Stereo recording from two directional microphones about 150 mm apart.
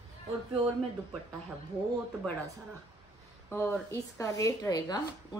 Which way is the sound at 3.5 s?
15° left (ahead or behind).